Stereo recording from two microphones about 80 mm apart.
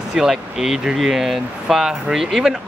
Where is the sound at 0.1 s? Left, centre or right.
Centre.